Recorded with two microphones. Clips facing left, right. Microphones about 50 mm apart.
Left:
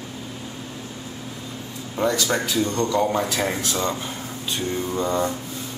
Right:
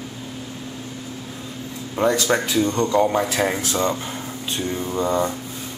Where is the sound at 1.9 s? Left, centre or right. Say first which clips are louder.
Right 3 dB; right.